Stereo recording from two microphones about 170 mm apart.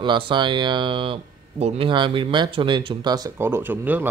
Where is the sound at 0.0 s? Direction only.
25° right (ahead or behind).